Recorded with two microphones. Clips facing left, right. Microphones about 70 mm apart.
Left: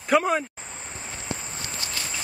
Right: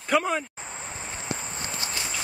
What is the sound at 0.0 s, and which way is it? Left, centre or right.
Speech, centre.